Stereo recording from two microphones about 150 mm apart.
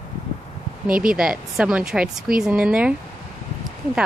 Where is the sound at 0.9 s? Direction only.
70° right (ahead or behind).